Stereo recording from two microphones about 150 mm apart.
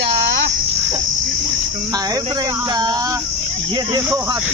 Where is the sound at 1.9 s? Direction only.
25° right (ahead or behind).